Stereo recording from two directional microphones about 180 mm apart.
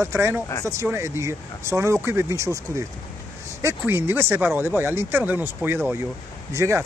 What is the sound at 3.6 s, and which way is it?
Speech, 15° right (ahead or behind).